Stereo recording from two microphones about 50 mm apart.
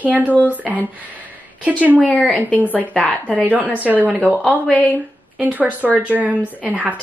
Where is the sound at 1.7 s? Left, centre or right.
Right.